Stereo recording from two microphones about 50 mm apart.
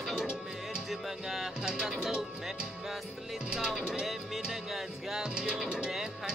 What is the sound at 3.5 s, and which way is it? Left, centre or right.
Speech, centre.